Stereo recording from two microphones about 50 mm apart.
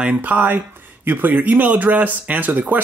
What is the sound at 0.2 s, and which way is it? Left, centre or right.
Speech, right.